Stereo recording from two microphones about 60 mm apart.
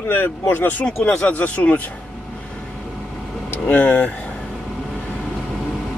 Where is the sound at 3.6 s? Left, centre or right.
Left.